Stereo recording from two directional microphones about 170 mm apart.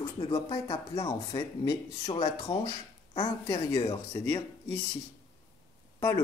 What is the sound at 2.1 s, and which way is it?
Speech, 35° left (ahead or behind).